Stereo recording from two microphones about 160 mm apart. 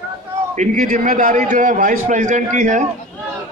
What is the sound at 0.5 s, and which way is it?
A man's voice, 50° right (ahead or behind).